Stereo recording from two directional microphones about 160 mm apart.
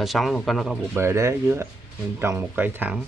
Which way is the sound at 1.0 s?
15° right (ahead or behind).